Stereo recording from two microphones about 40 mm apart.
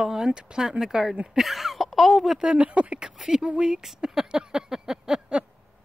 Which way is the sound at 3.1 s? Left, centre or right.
Centre.